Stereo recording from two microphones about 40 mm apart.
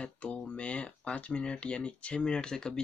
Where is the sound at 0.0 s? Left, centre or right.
Left.